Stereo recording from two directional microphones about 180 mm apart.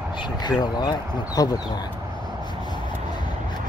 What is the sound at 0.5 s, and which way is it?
Speech, 25° left (ahead or behind).